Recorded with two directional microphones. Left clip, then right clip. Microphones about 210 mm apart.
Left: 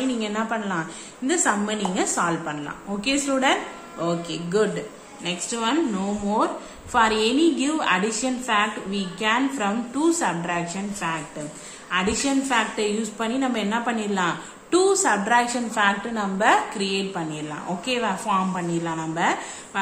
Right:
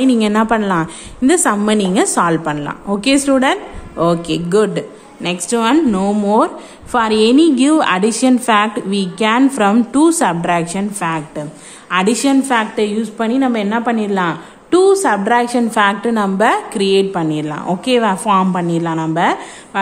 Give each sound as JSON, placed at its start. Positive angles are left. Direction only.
{"t": 0.0, "sound": "a woman's voice", "side_deg": -50}